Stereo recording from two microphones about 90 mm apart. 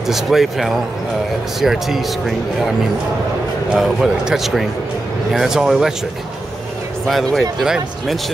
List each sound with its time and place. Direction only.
0.0 s speech: 5° right (ahead or behind)
3.7 s speech: 5° right (ahead or behind)
7.1 s speech: centre (ahead or behind)